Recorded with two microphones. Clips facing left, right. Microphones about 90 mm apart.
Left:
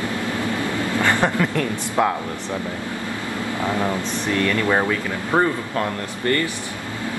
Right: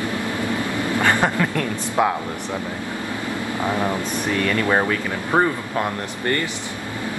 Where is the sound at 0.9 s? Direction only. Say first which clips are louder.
Right 1 dB; 15° right (ahead or behind).